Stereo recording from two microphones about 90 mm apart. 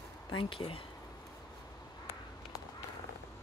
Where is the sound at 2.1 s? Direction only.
30° right (ahead or behind).